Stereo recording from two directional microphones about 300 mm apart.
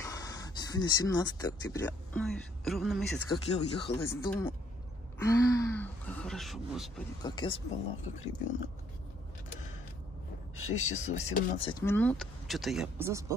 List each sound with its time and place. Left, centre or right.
0.0 s speech: centre
3.3 s speech: centre
7.2 s speech: centre
10.5 s speech: left
11.0 s speech: left; by 13.2 s centre